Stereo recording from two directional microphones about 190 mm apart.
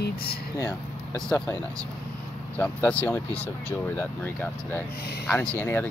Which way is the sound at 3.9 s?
10° left (ahead or behind).